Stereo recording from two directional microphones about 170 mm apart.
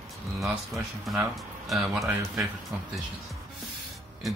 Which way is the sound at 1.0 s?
Centre (ahead or behind).